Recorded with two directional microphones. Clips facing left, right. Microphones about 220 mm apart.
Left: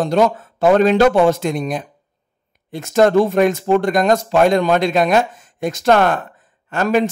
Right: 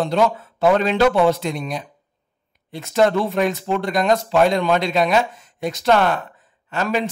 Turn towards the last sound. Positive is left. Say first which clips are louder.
# left 6 dB
turn(degrees=50)  # may be behind; listen again after turning